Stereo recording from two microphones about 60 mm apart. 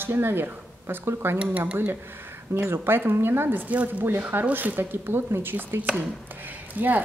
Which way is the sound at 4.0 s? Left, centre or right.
Right.